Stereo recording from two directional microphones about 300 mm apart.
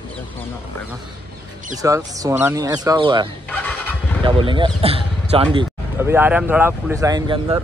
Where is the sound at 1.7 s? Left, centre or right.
Centre.